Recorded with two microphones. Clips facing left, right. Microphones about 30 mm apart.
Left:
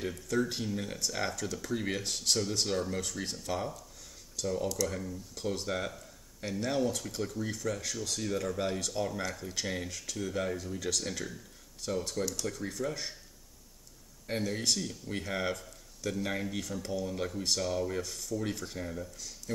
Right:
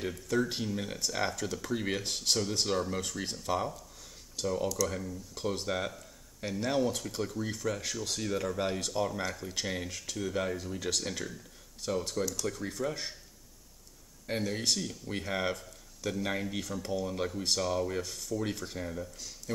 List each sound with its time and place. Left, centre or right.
0.0 s speech: centre
4.4 s speech: right
4.8 s speech: centre
14.2 s speech: centre